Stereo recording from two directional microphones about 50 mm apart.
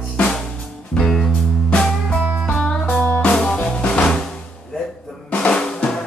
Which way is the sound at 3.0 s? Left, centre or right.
Left.